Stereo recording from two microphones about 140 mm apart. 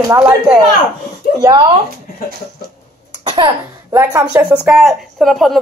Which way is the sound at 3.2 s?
35° right (ahead or behind).